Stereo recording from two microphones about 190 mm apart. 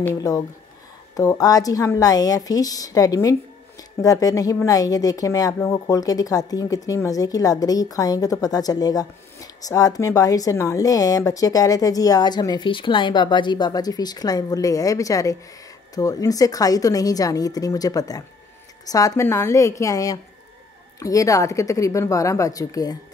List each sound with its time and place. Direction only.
0.0 s a woman's voice: 15° left (ahead or behind)